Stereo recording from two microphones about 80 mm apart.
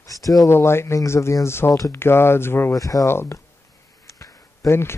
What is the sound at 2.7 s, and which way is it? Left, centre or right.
Speech, left.